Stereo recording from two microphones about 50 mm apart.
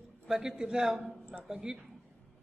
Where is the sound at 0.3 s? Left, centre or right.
Centre.